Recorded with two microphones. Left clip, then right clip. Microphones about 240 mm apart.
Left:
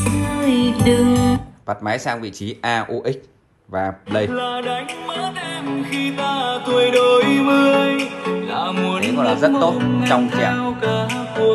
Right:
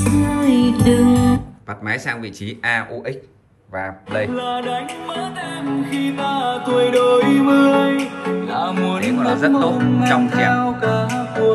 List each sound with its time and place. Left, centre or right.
0.0 s speech: centre
1.9 s speech: centre
4.3 s music: centre